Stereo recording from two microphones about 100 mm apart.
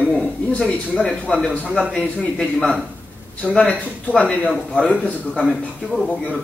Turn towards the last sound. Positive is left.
turn(degrees=15)  # may be behind; listen again after turning